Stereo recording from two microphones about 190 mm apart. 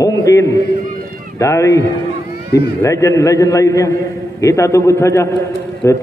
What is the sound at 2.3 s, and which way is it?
Cat, 55° left (ahead or behind).